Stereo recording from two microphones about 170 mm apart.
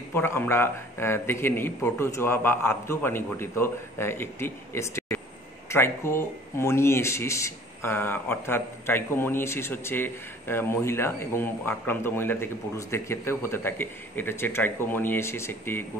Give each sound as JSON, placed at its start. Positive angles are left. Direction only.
{"t": 0.1, "sound": "speech", "side_deg": 15}